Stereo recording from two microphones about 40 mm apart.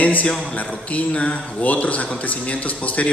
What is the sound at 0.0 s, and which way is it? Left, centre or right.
A man's voice, left.